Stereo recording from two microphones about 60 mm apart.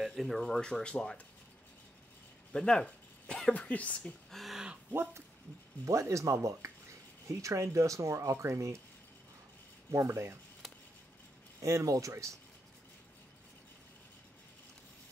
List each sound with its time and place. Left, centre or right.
0.0 s speech: centre
0.8 s speech: centre
2.5 s speech: centre
4.3 s a sound: centre
5.9 s speech: right
9.8 s speech: right
11.6 s speech: right